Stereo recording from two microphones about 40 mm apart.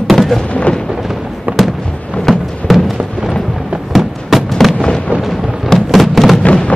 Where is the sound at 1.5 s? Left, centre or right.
Right.